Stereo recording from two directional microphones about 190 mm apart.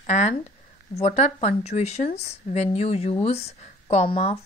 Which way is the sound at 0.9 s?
35° left (ahead or behind).